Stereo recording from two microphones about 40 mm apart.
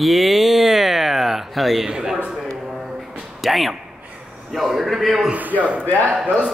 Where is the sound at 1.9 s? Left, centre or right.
Centre.